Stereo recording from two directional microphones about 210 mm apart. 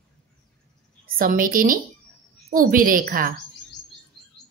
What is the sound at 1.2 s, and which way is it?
Speech, 40° right (ahead or behind).